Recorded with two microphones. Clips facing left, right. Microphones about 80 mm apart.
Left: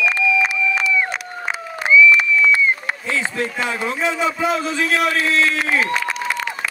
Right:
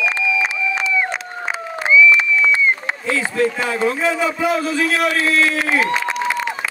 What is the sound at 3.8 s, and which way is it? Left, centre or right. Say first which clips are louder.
Speech: right 4 dB; centre.